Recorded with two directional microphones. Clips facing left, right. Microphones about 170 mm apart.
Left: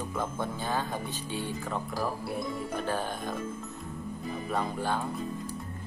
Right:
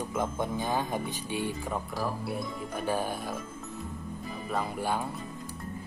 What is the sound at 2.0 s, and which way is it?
Speech, centre (ahead or behind).